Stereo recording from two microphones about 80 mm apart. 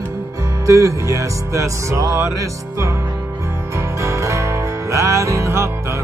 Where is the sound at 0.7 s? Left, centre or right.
Right.